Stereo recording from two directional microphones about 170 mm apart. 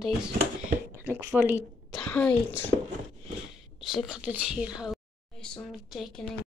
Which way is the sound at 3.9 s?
5° right (ahead or behind).